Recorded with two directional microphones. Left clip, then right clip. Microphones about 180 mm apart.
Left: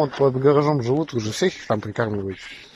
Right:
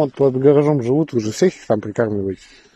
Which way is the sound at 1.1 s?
50° right (ahead or behind).